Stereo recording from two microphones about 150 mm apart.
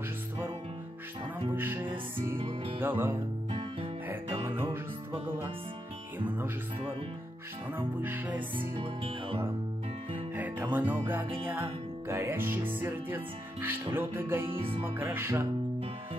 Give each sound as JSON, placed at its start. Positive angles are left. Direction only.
{"t": 1.5, "sound": "speech", "side_deg": -15}
{"t": 2.4, "sound": "music", "side_deg": -35}
{"t": 2.8, "sound": "speech", "side_deg": -15}
{"t": 4.4, "sound": "music", "side_deg": -15}
{"t": 6.1, "sound": "speech", "side_deg": -15}
{"t": 7.7, "sound": "speech", "side_deg": -15}
{"t": 8.5, "sound": "music", "side_deg": -35}
{"t": 10.1, "sound": "speech", "side_deg": -10}
{"t": 14.6, "sound": "music", "side_deg": -35}
{"t": 15.0, "sound": "speech", "side_deg": -15}